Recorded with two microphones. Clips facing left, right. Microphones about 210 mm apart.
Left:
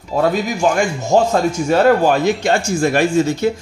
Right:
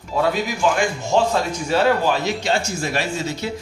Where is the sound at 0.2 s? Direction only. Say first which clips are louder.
Left 4 dB; 45° left (ahead or behind).